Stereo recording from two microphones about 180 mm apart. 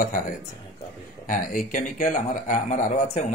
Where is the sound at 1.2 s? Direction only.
50° left (ahead or behind).